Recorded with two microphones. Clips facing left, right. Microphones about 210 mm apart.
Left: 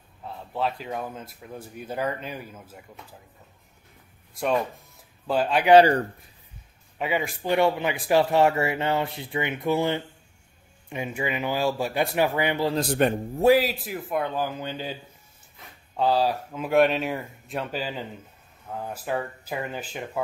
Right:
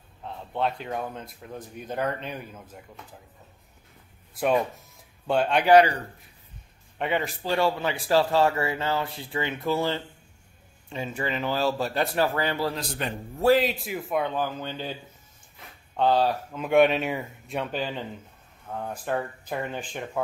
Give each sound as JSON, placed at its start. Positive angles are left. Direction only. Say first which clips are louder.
{"t": 0.2, "sound": "speech", "louder": "even", "side_deg": 5}
{"t": 4.3, "sound": "speech", "louder": "right 1 dB", "side_deg": -5}
{"t": 7.0, "sound": "speech", "louder": "even", "side_deg": 10}
{"t": 13.0, "sound": "speech", "louder": "left 10 dB", "side_deg": 55}
{"t": 13.5, "sound": "speech", "louder": "left 1 dB", "side_deg": 5}
{"t": 16.0, "sound": "speech", "louder": "even", "side_deg": 5}